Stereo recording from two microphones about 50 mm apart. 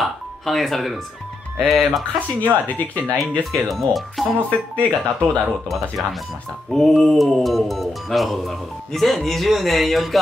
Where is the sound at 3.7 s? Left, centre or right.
Centre.